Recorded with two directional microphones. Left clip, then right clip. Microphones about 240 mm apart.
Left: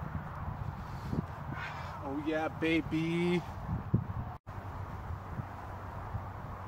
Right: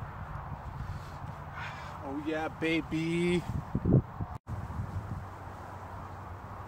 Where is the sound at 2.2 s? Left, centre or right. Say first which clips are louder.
Even; centre.